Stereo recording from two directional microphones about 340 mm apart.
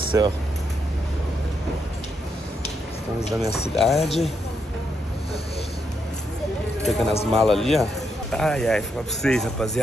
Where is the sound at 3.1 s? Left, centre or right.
Centre.